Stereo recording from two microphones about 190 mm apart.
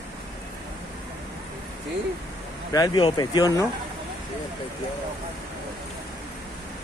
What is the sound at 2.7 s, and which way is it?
Speech, 25° left (ahead or behind).